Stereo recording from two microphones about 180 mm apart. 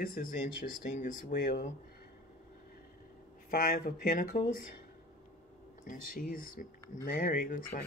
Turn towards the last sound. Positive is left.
turn(degrees=55)  # may be behind; listen again after turning